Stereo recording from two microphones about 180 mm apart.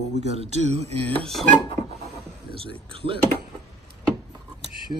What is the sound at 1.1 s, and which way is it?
Speech, 5° left (ahead or behind).